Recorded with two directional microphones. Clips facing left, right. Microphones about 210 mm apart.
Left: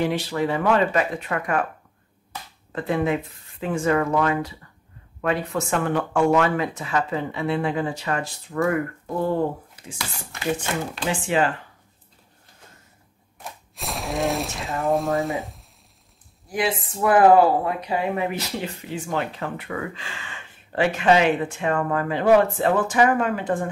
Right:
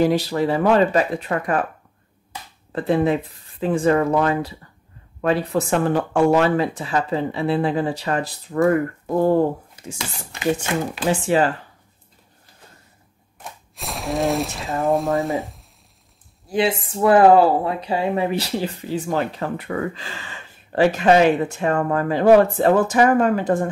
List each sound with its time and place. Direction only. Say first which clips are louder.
0.0 s speech: right 5 dB; 35° right (ahead or behind)
2.7 s speech: right 4 dB; 35° right (ahead or behind)
11.1 s speech: right 4 dB; 40° right (ahead or behind)
13.4 s speech: even; centre (ahead or behind)
16.4 s speech: right 4 dB; 30° right (ahead or behind)